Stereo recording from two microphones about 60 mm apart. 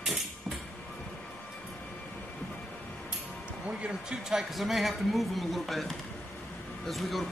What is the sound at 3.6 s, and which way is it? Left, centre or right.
Speech, centre.